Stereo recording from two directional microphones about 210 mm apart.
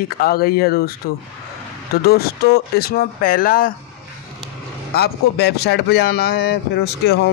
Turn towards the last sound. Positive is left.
turn(degrees=50)  # may be behind; listen again after turning